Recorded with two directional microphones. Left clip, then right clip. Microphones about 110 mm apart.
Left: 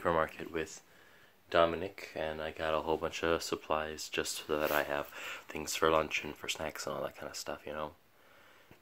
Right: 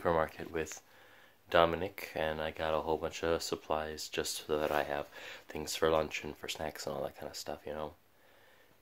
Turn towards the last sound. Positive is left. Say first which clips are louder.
# left 1 dB
turn(degrees=-25)  # may be behind; listen again after turning